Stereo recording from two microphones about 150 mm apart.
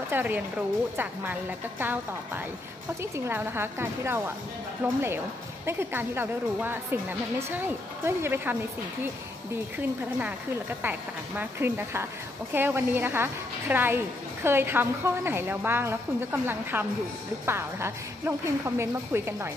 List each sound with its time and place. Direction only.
0.1 s a woman's voice: 10° right (ahead or behind)